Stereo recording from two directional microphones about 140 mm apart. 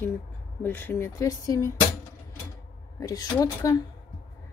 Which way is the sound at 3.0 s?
25° left (ahead or behind).